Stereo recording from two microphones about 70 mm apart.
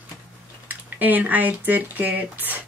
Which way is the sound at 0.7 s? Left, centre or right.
Right.